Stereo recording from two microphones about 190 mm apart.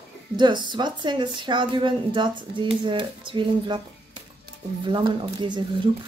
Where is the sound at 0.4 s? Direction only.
25° right (ahead or behind).